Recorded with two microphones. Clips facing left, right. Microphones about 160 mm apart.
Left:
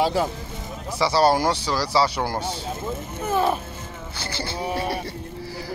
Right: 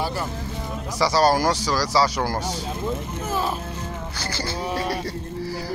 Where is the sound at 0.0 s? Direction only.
90° left.